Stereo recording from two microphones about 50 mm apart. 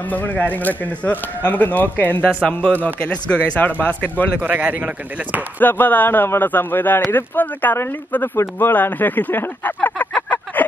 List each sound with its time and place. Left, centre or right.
0.1 s speech: left
3.1 s speech: left
4.4 s speech: right
5.6 s speech: left
10.1 s a sound: left